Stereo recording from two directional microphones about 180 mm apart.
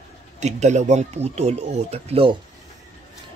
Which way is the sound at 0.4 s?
40° right (ahead or behind).